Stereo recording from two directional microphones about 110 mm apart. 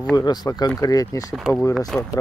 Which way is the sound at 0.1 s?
40° left (ahead or behind).